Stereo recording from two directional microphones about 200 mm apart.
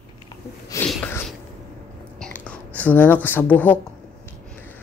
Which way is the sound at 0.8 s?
5° left (ahead or behind).